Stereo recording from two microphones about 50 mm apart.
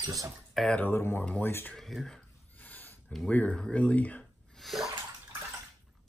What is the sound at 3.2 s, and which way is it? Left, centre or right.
Speech, left.